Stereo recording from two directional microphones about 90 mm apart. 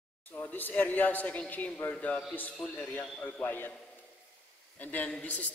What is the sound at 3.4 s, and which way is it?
Speech, 20° left (ahead or behind).